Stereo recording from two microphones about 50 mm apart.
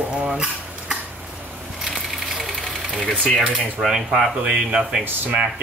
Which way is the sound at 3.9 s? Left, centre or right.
Centre.